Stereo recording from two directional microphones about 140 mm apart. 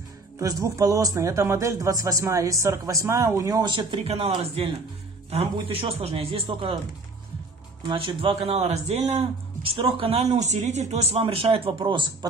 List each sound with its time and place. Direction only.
0.4 s speech: 25° right (ahead or behind)
3.7 s speech: 45° right (ahead or behind)
7.9 s speech: 40° right (ahead or behind)